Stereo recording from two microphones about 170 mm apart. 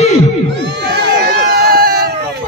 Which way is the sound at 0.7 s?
90° right.